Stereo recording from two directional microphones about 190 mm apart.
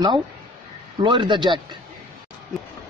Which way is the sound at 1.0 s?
25° right (ahead or behind).